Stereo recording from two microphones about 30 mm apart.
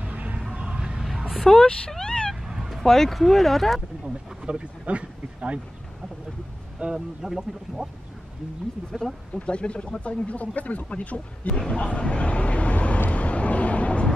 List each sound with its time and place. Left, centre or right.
0.0 s music: right
0.5 s music: right
1.4 s speech: centre
2.0 s cat: left
2.4 s fowl: centre
2.8 s speech: centre
4.0 s speech: right
6.8 s speech: right
7.2 s speech: centre
8.9 s speech: centre
9.3 s speech: left
11.5 s speech: left
12.0 s vehicle: left